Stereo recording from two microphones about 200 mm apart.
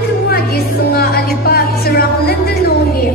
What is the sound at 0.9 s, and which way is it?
Music, 50° left (ahead or behind).